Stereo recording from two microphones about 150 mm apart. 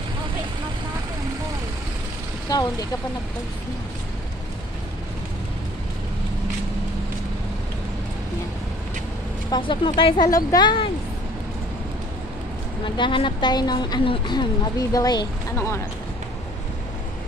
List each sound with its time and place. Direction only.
2.5 s a woman's voice: 25° left (ahead or behind)
9.5 s speech: 35° left (ahead or behind)
12.8 s a woman's voice: 30° left (ahead or behind); by 15.8 s 15° left (ahead or behind)